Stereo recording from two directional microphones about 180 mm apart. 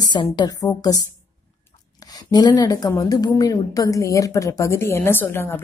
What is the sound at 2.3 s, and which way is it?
Speech, 20° left (ahead or behind).